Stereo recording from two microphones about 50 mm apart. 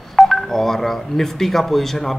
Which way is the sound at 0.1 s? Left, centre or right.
Centre.